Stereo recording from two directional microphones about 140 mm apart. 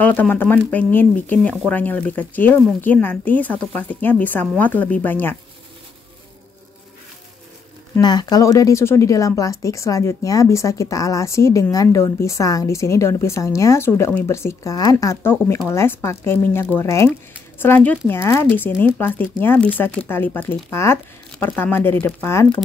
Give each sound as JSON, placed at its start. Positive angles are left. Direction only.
{"t": 0.0, "sound": "speech", "side_deg": 10}
{"t": 8.0, "sound": "speech", "side_deg": 30}